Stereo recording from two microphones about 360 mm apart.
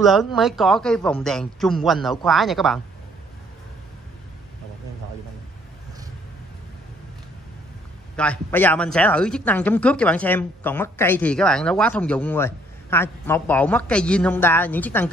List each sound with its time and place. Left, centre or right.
0.0 s speech: centre
8.2 s speech: centre